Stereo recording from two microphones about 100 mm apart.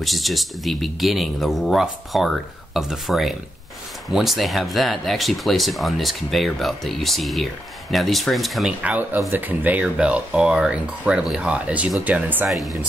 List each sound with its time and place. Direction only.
0.0 s speech: centre (ahead or behind)
8.8 s speech: 15° right (ahead or behind)
12.4 s speech: centre (ahead or behind)